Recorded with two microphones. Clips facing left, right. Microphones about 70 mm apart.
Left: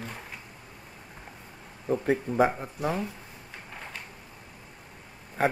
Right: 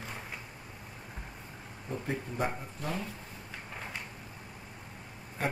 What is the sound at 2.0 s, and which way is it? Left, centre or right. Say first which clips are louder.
Speech: left 10 dB; left.